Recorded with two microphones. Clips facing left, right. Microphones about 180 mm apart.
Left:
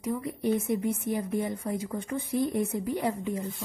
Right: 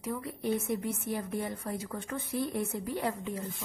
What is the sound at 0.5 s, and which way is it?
Speech, 55° left (ahead or behind).